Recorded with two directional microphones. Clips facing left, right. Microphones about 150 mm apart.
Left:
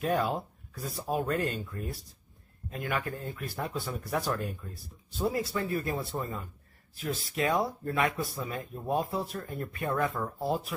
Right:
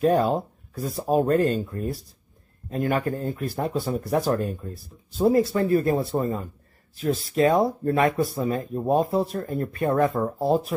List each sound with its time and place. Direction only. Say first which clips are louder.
0.0 s speech: right 8 dB; 35° right (ahead or behind)